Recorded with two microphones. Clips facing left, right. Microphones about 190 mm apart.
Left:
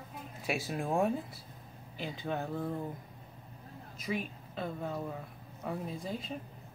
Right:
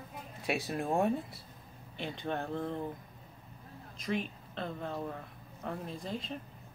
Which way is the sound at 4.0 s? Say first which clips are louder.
Right 1 dB; 5° left (ahead or behind).